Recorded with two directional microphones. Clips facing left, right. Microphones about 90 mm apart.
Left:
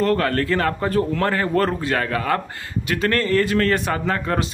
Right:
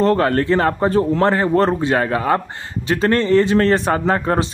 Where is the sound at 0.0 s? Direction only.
25° right (ahead or behind).